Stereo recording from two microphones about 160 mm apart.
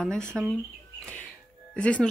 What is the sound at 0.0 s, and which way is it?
Speech, 5° left (ahead or behind).